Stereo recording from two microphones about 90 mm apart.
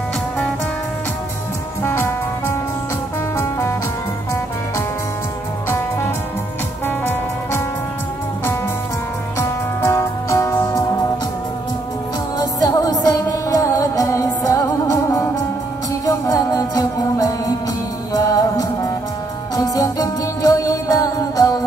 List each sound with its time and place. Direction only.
1.8 s music: 25° left (ahead or behind)
5.7 s music: 25° left (ahead or behind)
9.4 s music: 30° left (ahead or behind)
12.4 s music: 45° left (ahead or behind)